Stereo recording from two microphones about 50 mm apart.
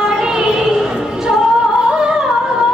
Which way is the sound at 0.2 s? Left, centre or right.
Centre.